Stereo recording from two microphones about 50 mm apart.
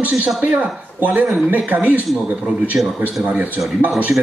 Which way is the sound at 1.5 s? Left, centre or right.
Right.